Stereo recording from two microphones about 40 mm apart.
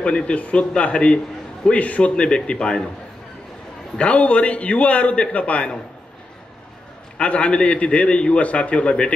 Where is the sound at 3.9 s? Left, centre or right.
Left.